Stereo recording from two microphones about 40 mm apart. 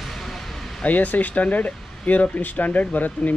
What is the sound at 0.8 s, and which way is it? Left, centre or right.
Speech, left.